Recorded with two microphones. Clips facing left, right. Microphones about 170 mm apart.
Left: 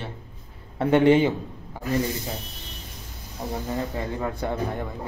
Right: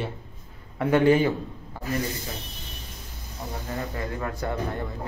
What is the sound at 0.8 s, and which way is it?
Speech, 25° left (ahead or behind).